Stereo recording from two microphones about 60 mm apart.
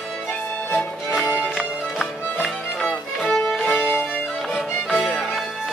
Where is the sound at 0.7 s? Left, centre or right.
Left.